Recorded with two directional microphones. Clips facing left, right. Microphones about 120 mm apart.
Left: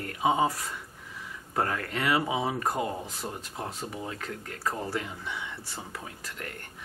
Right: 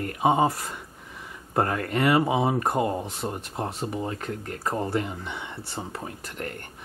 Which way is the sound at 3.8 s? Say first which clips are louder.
Right 6 dB; 45° right (ahead or behind).